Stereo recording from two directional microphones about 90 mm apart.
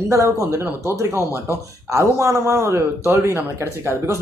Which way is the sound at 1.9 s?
35° right (ahead or behind).